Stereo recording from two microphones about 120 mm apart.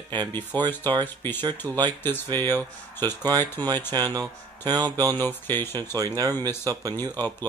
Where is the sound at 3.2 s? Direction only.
35° right (ahead or behind).